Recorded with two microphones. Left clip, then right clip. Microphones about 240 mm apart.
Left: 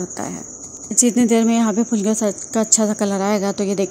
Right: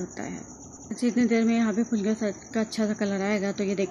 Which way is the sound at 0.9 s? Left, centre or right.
Left.